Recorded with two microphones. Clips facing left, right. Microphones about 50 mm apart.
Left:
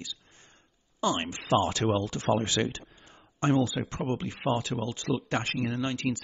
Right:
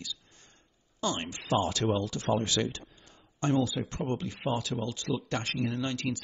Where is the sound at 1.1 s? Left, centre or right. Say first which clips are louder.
Left 2 dB; left.